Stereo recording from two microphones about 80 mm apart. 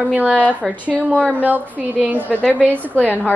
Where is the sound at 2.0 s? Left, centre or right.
Right.